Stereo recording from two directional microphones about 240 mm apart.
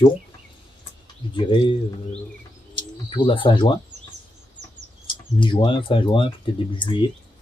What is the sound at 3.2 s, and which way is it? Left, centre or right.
Speech, left.